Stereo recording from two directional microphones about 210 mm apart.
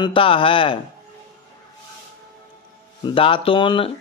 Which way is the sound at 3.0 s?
25° left (ahead or behind).